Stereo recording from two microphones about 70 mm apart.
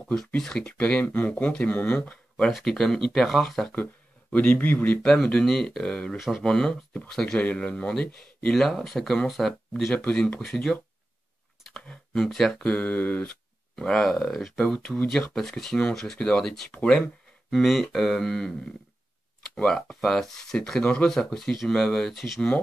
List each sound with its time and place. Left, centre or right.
0.4 s speech: centre
2.5 s speech: centre
3.7 s speech: left
5.0 s speech: centre
9.9 s speech: centre
11.9 s speech: centre
12.8 s speech: left
13.7 s speech: centre
17.5 s speech: centre
19.6 s speech: centre